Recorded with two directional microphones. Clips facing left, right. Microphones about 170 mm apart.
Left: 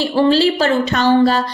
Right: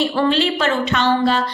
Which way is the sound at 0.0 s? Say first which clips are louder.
Left 4 dB; 30° left (ahead or behind).